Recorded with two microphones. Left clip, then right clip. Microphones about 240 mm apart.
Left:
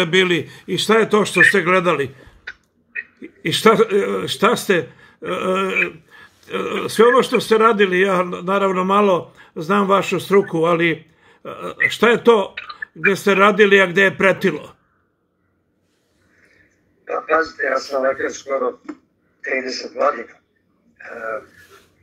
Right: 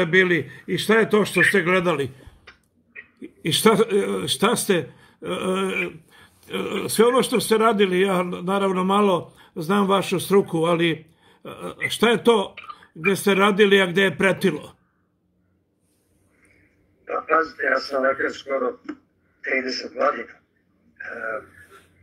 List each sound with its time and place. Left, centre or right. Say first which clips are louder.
0.0 s a man's voice: left 2 dB; centre
18.0 s speech: left 2 dB; left
21.1 s speech: left 3 dB; left